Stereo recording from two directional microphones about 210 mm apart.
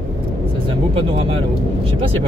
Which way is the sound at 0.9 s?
25° right (ahead or behind).